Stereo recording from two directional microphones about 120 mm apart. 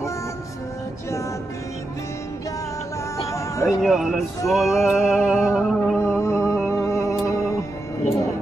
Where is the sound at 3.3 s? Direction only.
25° left (ahead or behind).